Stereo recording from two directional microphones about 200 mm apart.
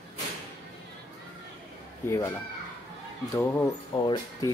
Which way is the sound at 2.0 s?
10° left (ahead or behind).